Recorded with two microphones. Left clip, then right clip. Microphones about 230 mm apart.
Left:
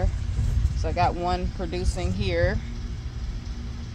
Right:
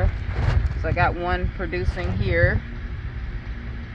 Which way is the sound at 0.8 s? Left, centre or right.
Centre.